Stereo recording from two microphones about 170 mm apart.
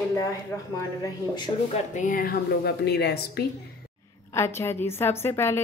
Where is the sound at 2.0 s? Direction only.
55° left (ahead or behind); by 3.4 s 75° left (ahead or behind).